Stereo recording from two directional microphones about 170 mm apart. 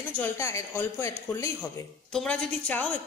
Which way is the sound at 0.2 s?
15° left (ahead or behind).